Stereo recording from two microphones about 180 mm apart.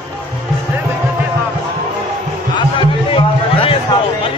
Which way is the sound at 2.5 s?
30° left (ahead or behind).